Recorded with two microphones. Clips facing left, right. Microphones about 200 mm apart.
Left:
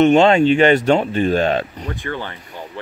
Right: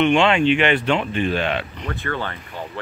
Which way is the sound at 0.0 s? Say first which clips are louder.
Left 5 dB; 40° left (ahead or behind).